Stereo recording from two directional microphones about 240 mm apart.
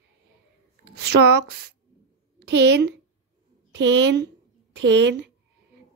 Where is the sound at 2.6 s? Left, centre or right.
Right.